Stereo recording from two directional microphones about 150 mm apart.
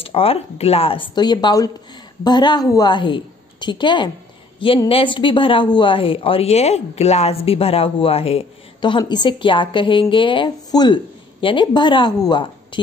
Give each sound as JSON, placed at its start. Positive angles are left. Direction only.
{"t": 0.0, "sound": "a woman's voice", "side_deg": 40}